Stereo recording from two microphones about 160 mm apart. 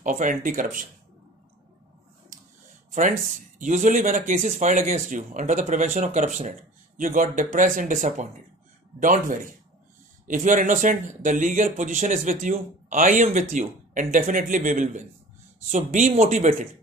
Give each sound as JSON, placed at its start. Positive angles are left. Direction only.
{"t": 0.0, "sound": "speech", "side_deg": -55}
{"t": 2.9, "sound": "speech", "side_deg": -55}